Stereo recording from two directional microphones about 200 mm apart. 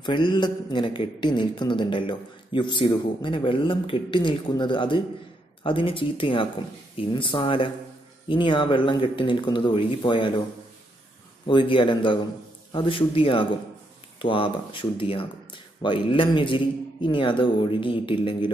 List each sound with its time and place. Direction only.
0.0 s a man's voice: 25° left (ahead or behind)
11.4 s a man's voice: 25° left (ahead or behind)